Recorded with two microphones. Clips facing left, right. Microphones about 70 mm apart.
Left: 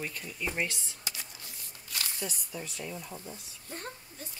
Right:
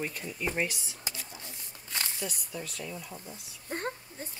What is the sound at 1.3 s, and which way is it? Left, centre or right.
Shuffling cards, right.